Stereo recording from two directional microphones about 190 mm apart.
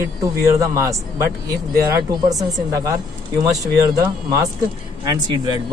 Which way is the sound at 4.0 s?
20° right (ahead or behind).